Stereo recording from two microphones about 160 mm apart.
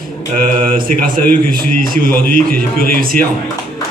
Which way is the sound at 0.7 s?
60° right (ahead or behind).